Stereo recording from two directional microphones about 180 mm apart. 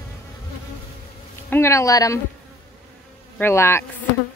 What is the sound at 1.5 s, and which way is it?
Speech, 15° left (ahead or behind).